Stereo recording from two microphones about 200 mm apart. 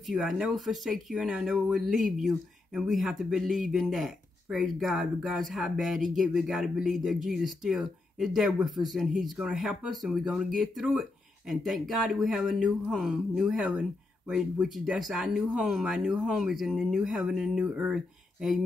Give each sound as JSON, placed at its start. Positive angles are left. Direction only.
{"t": 0.0, "sound": "speech", "side_deg": 0}